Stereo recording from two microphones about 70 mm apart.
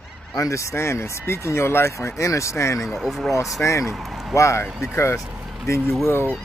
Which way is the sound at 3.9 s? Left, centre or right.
Centre.